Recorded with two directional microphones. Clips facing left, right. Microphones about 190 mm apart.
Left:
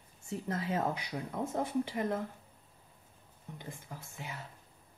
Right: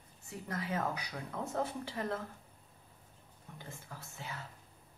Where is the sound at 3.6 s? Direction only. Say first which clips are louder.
Left 2 dB; 20° left (ahead or behind).